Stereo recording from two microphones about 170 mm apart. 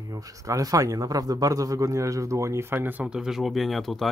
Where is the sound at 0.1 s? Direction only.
20° right (ahead or behind).